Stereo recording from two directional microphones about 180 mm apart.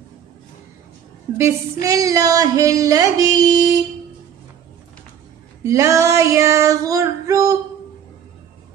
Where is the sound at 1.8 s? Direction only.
20° right (ahead or behind).